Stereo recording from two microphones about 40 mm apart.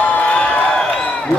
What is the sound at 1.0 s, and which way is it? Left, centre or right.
Crowd, left.